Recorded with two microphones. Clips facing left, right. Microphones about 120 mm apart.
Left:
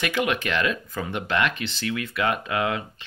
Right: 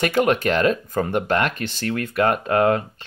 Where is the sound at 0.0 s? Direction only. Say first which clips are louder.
Right 6 dB; 40° right (ahead or behind).